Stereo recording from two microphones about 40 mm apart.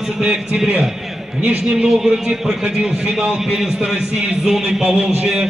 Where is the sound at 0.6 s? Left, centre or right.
Centre.